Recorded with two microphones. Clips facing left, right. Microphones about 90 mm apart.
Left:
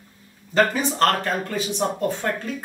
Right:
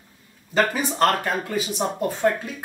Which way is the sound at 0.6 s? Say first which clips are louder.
Left 1 dB; 5° right (ahead or behind).